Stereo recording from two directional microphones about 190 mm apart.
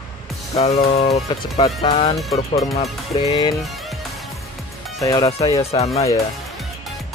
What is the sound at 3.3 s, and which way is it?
Speech, 20° left (ahead or behind).